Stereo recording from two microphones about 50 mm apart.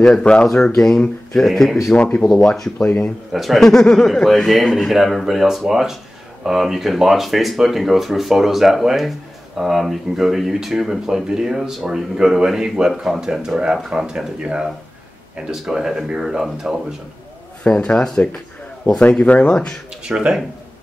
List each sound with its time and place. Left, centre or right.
0.0 s speech: centre
0.7 s speech: centre
2.0 s speech: left
2.2 s speech: centre
3.3 s speech: centre
3.6 s speech: centre
16.6 s speech: right
17.6 s speech: left
20.0 s speech: centre